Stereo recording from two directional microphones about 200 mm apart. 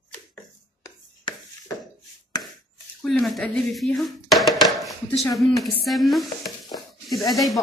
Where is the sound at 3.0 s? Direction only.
Centre (ahead or behind).